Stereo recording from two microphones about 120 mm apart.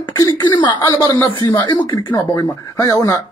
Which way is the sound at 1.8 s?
20° left (ahead or behind).